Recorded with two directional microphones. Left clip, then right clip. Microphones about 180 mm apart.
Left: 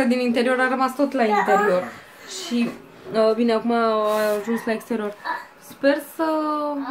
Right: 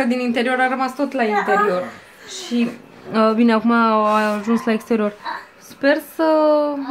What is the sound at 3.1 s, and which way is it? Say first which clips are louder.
Speech: right 2 dB; 30° right (ahead or behind).